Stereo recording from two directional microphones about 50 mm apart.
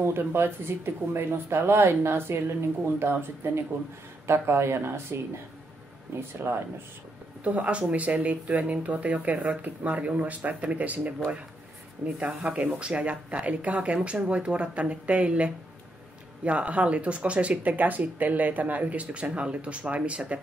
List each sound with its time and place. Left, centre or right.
0.0 s speech: right
7.4 s speech: right
12.2 s speech: right